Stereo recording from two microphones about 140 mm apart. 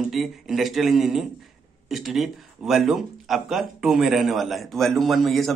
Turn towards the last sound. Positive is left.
turn(degrees=0)  # may be behind; listen again after turning